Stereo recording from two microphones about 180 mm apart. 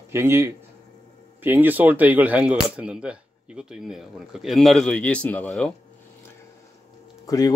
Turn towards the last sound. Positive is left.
turn(degrees=20)  # may be behind; listen again after turning